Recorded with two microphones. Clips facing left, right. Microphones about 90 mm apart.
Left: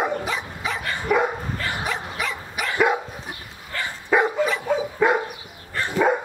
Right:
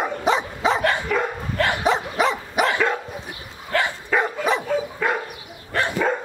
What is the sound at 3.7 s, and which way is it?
Dog, 65° right (ahead or behind).